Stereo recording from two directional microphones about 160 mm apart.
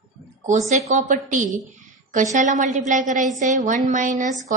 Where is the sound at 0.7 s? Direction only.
45° right (ahead or behind).